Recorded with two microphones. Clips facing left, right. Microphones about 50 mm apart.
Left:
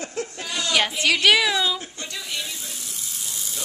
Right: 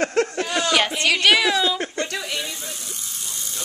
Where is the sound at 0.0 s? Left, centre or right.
Right.